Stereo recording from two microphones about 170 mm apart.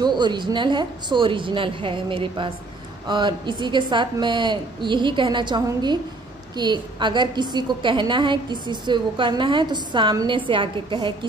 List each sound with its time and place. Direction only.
0.0 s a woman's voice: 25° right (ahead or behind)